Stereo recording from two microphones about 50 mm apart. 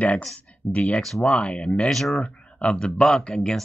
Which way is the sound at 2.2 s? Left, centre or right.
Left.